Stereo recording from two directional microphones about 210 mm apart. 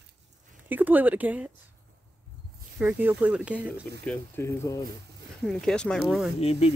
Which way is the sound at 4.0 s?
10° left (ahead or behind).